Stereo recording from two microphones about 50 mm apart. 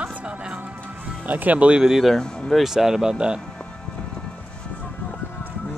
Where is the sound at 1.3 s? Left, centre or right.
Right.